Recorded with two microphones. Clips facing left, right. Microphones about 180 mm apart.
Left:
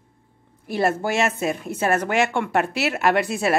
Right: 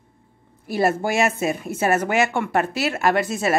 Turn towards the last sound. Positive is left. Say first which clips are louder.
# even
turn(degrees=0)  # may be behind; listen again after turning